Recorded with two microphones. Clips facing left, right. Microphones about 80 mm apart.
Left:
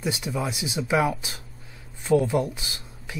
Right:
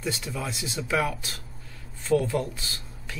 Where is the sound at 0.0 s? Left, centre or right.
Centre.